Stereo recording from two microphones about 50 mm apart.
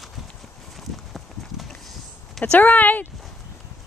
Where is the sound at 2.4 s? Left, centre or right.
Left.